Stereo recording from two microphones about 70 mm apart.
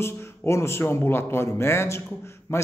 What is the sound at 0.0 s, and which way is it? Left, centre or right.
A man's voice, left.